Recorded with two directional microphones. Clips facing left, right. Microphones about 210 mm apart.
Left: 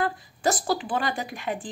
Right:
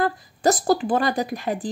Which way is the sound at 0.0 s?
40° right (ahead or behind).